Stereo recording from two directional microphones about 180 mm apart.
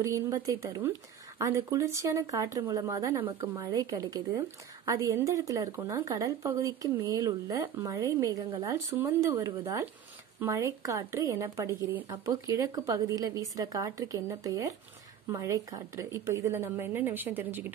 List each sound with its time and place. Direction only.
0.0 s a woman's voice: 15° right (ahead or behind)